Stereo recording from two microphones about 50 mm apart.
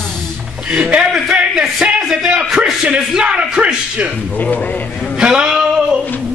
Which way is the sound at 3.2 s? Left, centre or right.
Centre.